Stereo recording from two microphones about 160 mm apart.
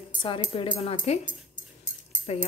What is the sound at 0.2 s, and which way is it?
Speech, 30° left (ahead or behind).